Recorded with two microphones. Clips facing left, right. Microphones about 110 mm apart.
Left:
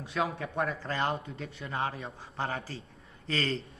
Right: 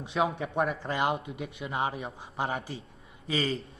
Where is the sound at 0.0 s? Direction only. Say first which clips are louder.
Right 3 dB; 25° right (ahead or behind).